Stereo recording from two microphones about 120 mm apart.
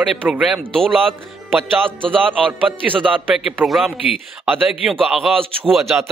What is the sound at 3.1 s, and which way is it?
Speech, 15° right (ahead or behind).